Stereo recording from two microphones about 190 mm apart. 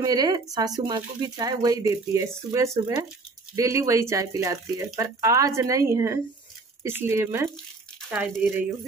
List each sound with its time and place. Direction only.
0.0 s speech: 20° right (ahead or behind)